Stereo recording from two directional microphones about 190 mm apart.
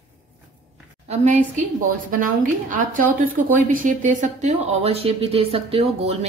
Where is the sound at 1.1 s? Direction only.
40° right (ahead or behind).